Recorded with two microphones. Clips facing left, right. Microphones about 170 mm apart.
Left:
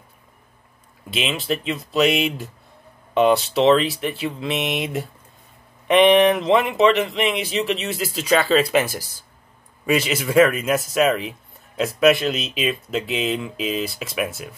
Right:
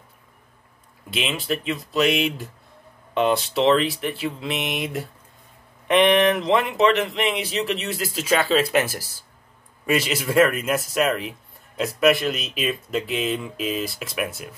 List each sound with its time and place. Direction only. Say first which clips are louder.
1.5 s speech: left 2 dB; centre (ahead or behind)